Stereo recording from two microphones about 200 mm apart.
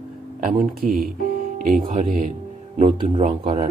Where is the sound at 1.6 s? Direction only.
40° right (ahead or behind).